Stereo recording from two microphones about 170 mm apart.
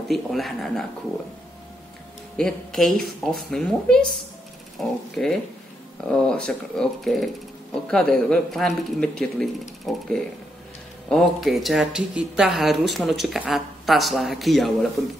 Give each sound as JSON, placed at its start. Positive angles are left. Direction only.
{"t": 0.1, "sound": "speech", "side_deg": 0}
{"t": 2.3, "sound": "speech", "side_deg": 0}